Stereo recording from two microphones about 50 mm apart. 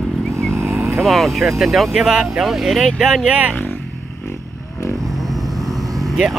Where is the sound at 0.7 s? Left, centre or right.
Centre.